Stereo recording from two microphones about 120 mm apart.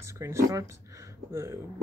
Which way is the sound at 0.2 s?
25° right (ahead or behind).